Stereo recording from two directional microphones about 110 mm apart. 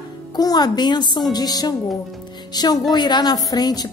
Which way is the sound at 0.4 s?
35° left (ahead or behind).